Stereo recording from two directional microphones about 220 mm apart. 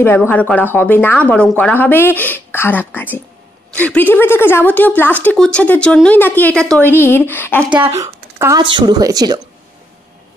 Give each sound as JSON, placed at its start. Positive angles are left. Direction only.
{"t": 0.3, "sound": "a woman's voice", "side_deg": 5}
{"t": 7.6, "sound": "speech", "side_deg": -15}